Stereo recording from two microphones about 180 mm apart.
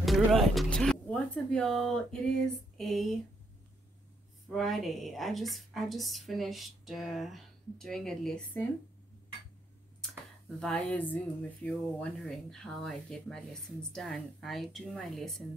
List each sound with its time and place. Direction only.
0.0 s speech: centre (ahead or behind)
4.5 s speech: centre (ahead or behind)
10.6 s speech: 5° left (ahead or behind)